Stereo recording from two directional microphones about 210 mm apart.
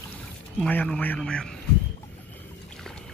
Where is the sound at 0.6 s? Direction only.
5° left (ahead or behind).